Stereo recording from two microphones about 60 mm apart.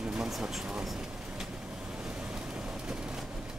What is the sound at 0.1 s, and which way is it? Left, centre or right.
Speech, centre.